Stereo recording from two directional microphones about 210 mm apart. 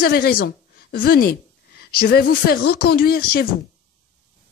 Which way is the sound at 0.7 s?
50° left (ahead or behind).